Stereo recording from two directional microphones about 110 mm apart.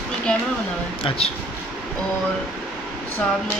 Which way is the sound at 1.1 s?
60° left (ahead or behind).